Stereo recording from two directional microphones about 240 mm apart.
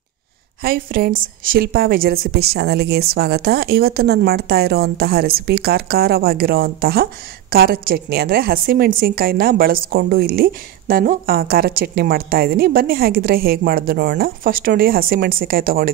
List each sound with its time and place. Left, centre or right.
0.6 s a woman's voice: right